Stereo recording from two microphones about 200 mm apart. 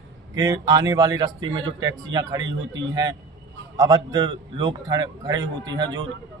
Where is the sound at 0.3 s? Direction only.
20° right (ahead or behind).